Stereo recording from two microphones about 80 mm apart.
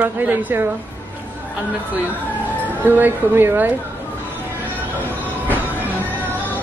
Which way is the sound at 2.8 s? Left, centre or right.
Right.